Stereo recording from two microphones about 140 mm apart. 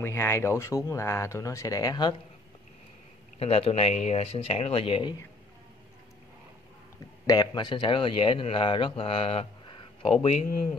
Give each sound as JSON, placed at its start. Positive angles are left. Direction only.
{"t": 0.0, "sound": "speech", "side_deg": 15}
{"t": 3.3, "sound": "speech", "side_deg": 45}
{"t": 7.2, "sound": "speech", "side_deg": 30}